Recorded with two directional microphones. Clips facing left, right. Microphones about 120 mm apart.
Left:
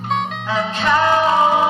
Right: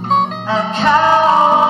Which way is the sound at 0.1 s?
35° right (ahead or behind).